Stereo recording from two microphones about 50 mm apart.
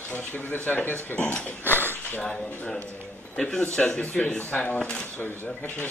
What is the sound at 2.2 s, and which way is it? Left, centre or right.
Speech, centre.